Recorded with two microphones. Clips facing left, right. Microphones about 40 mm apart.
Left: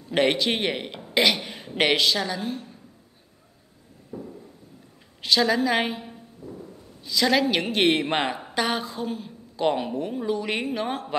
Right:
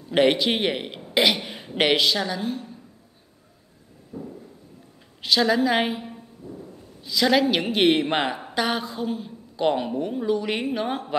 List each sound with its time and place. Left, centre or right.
0.1 s speech: centre
4.1 s a sound: centre
5.2 s a woman's voice: centre